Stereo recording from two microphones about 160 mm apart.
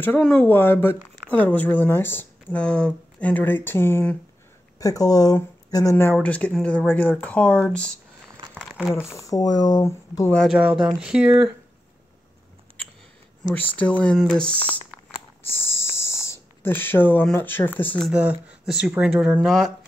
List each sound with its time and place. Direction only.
0.0 s speech: 10° left (ahead or behind)
4.7 s speech: 20° left (ahead or behind)
8.4 s crumpling: 30° right (ahead or behind)
8.9 s speech: 15° left (ahead or behind)
10.3 s speech: 5° left (ahead or behind)
10.6 s speech: 10° right (ahead or behind)
13.4 s speech: 10° left (ahead or behind)
18.1 s speech: 5° right (ahead or behind)